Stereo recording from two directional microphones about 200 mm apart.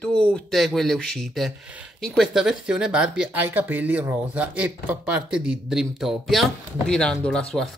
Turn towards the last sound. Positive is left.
turn(degrees=5)  # may be behind; listen again after turning